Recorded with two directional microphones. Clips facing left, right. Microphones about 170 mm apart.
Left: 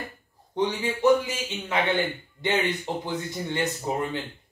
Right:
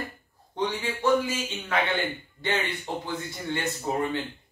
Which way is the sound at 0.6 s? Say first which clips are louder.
Left 3 dB; 20° left (ahead or behind).